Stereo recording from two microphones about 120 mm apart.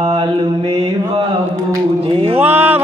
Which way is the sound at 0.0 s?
50° right (ahead or behind).